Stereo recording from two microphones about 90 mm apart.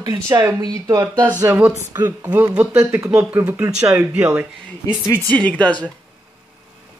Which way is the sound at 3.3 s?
30° right (ahead or behind).